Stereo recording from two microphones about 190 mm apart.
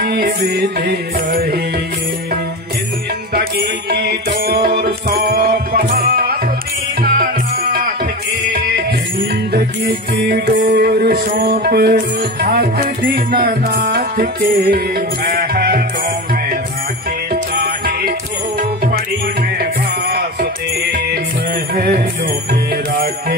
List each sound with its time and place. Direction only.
0.0 s music: 50° right (ahead or behind)
3.9 s music: 55° right (ahead or behind)
17.3 s music: 50° right (ahead or behind)
19.6 s music: 55° right (ahead or behind)
21.7 s music: 60° right (ahead or behind)